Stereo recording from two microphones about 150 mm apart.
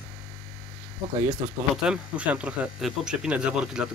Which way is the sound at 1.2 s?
5° right (ahead or behind).